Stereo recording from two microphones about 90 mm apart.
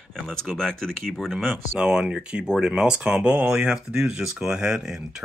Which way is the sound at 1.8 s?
10° right (ahead or behind).